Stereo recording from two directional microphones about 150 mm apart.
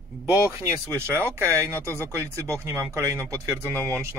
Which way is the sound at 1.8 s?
15° left (ahead or behind).